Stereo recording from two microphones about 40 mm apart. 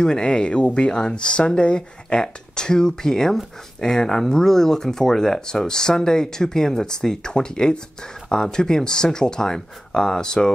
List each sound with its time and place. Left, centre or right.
0.0 s speech: left